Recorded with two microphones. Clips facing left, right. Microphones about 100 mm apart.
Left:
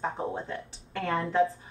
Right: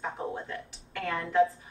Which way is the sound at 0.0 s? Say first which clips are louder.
Left 3 dB; 30° left (ahead or behind).